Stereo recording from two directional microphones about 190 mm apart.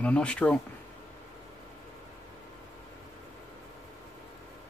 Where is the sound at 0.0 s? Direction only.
5° left (ahead or behind).